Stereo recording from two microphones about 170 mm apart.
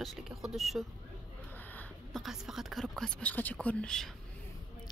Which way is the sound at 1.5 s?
10° left (ahead or behind).